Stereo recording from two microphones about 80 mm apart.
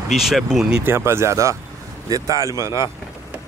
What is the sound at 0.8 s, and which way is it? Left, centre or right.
Speech, right.